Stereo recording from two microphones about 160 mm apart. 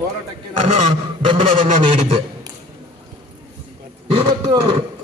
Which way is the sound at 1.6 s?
45° right (ahead or behind).